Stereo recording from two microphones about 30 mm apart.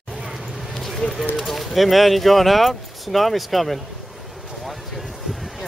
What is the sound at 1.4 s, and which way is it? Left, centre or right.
Speech, centre.